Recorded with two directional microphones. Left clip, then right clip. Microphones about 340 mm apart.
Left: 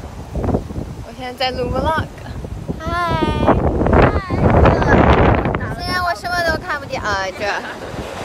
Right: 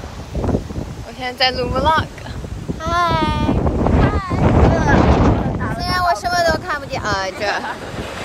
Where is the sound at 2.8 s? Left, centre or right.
Centre.